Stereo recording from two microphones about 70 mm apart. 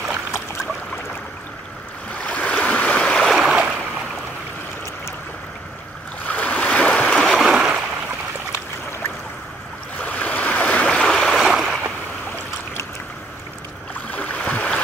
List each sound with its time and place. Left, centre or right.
2.2 s stream: left
3.3 s stream: centre
6.2 s stream: left
7.2 s stream: centre
9.9 s stream: left
11.0 s stream: centre
14.1 s a sound: left